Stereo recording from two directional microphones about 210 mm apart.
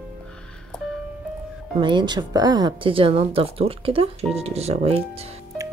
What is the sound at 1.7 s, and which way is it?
Speech, 20° right (ahead or behind).